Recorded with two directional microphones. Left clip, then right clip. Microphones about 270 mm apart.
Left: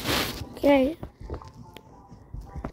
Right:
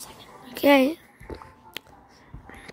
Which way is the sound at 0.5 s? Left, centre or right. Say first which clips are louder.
Right 2 dB; right.